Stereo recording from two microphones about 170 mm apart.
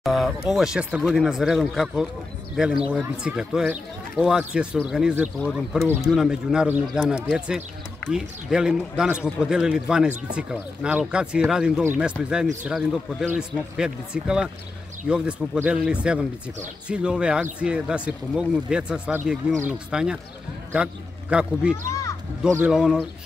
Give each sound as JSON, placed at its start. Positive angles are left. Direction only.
{"t": 0.0, "sound": "a man's voice", "side_deg": 0}
{"t": 21.8, "sound": "speech", "side_deg": 15}
{"t": 22.7, "sound": "speech", "side_deg": -5}